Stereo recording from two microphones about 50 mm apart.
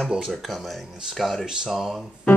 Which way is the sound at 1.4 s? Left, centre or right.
Centre.